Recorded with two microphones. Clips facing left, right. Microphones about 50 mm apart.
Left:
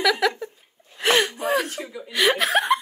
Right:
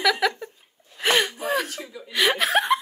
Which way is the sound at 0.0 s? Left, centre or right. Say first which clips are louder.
Left 1 dB; centre.